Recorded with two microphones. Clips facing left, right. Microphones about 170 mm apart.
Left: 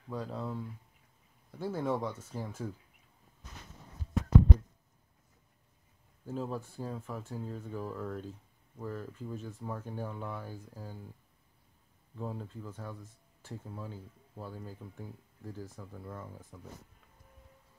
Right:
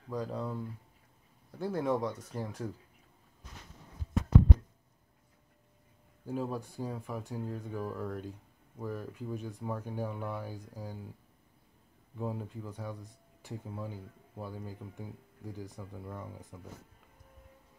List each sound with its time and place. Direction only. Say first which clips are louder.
0.1 s speech: right 2 dB; centre (ahead or behind)
6.2 s speech: right 2 dB; 10° right (ahead or behind)
9.7 s speech: right 3 dB; 5° right (ahead or behind)
12.2 s speech: right 3 dB; 15° right (ahead or behind)